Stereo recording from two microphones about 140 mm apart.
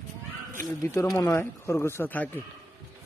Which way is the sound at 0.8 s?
15° left (ahead or behind).